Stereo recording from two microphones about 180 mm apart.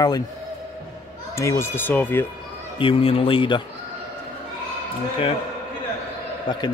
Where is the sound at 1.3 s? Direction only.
15° left (ahead or behind).